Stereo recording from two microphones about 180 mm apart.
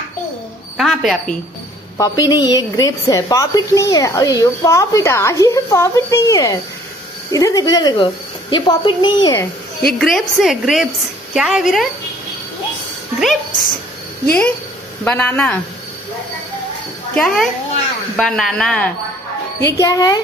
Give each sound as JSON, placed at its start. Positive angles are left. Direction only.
{"t": 0.7, "sound": "a woman's voice", "side_deg": 0}
{"t": 2.0, "sound": "a woman's voice", "side_deg": 20}
{"t": 9.8, "sound": "a woman's voice", "side_deg": 0}
{"t": 13.2, "sound": "a woman's voice", "side_deg": 0}
{"t": 15.0, "sound": "speech", "side_deg": 10}
{"t": 17.1, "sound": "a woman's voice", "side_deg": 0}
{"t": 19.8, "sound": "a woman's voice", "side_deg": 20}